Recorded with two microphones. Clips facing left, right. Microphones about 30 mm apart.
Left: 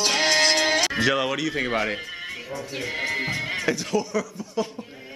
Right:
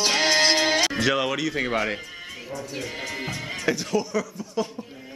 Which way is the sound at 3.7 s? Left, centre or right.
Centre.